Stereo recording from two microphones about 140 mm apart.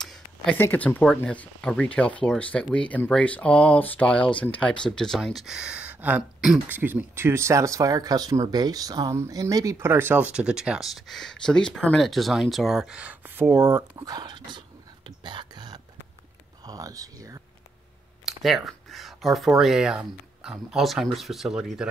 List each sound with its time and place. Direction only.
0.0 s a sound: 5° left (ahead or behind)
0.6 s speech: 10° left (ahead or behind); by 14.6 s 30° right (ahead or behind)
15.0 s whispering: 35° right (ahead or behind)
16.6 s speech: 25° right (ahead or behind)
18.2 s speech: centre (ahead or behind)